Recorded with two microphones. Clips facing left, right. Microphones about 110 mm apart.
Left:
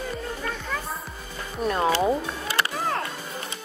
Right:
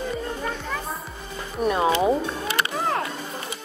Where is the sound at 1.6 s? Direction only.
10° right (ahead or behind).